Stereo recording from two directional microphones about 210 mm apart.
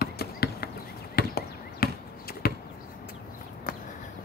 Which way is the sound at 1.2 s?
45° left (ahead or behind).